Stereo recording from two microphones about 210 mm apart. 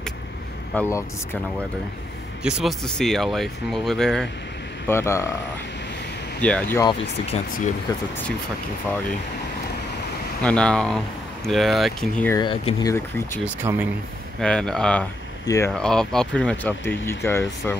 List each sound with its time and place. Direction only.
0.7 s speech: 10° left (ahead or behind)
2.4 s speech: centre (ahead or behind)
6.4 s speech: 5° left (ahead or behind)
6.8 s speech: 25° left (ahead or behind)
10.4 s speech: 5° left (ahead or behind)
12.4 s speech: 20° left (ahead or behind)
13.6 s speech: 10° right (ahead or behind)
14.4 s speech: 5° left (ahead or behind)
15.7 s speech: 5° left (ahead or behind)